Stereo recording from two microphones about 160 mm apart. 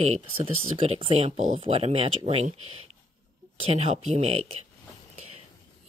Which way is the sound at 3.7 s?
40° right (ahead or behind).